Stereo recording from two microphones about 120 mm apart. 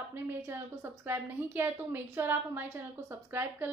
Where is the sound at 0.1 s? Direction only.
20° right (ahead or behind).